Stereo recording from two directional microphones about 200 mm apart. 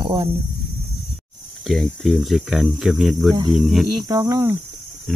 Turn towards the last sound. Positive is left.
turn(degrees=-15)  # may be behind; listen again after turning